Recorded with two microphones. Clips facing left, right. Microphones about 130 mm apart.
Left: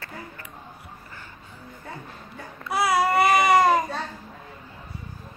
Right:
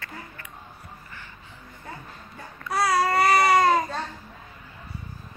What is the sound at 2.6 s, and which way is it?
Babbling, 5° left (ahead or behind).